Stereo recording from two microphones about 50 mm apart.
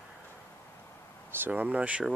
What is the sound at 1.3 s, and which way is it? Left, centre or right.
Speech, right.